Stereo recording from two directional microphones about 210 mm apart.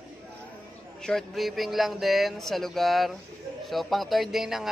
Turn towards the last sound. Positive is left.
turn(degrees=0)  # may be behind; listen again after turning